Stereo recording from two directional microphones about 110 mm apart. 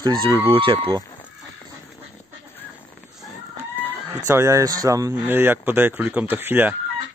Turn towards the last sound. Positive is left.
turn(degrees=-20)  # may be behind; listen again after turning